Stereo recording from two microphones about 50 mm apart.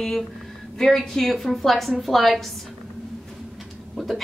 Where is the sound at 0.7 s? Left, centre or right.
Centre.